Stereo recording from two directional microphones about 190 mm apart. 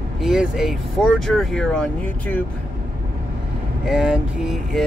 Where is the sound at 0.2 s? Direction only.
Centre (ahead or behind).